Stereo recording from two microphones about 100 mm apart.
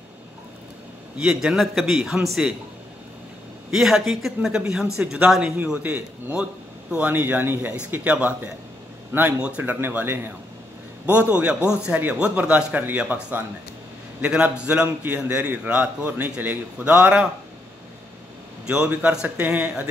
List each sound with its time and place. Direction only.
1.1 s a man's voice: 5° right (ahead or behind)
3.7 s a man's voice: centre (ahead or behind)
18.9 s a man's voice: 15° right (ahead or behind)